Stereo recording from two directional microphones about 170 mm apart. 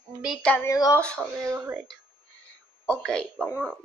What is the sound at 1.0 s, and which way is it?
Speech, 5° left (ahead or behind).